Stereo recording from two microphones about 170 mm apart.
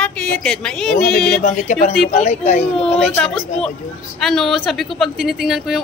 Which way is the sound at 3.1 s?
5° left (ahead or behind).